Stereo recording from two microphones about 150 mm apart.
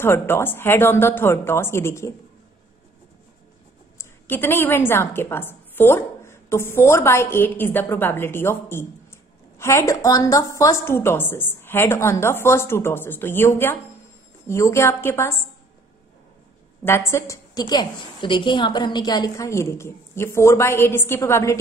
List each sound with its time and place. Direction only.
0.0 s a woman's voice: 15° left (ahead or behind)
4.0 s a woman's voice: 15° left (ahead or behind)
16.8 s a woman's voice: 15° left (ahead or behind)